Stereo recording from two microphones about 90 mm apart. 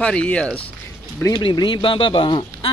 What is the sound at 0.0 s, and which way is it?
Speech, 15° left (ahead or behind).